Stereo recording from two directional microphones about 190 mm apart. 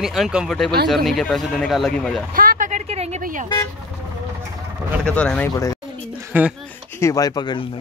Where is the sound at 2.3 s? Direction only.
45° right (ahead or behind).